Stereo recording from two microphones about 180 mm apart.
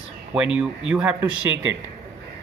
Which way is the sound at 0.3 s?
5° right (ahead or behind).